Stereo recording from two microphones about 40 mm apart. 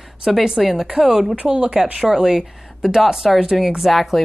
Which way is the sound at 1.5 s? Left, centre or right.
Right.